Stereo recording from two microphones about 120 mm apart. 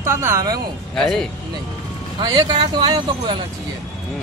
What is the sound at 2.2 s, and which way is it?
Speech, 35° right (ahead or behind).